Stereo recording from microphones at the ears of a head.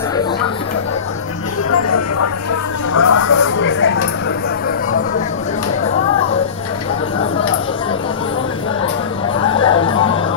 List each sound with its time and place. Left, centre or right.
2.9 s music: left
5.9 s music: left
9.4 s chatter: left